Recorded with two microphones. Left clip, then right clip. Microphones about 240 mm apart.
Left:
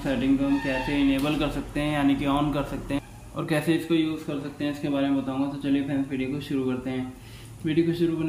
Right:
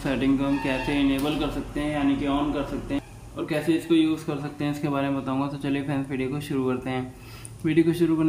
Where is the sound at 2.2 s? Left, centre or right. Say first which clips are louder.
Even; centre.